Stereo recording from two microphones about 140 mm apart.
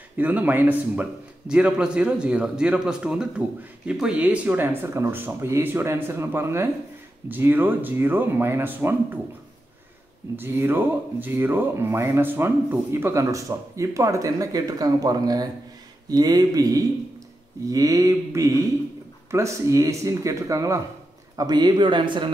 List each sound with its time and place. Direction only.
0.2 s a man's voice: 10° right (ahead or behind)
10.3 s speech: 15° right (ahead or behind); by 22.3 s 35° right (ahead or behind)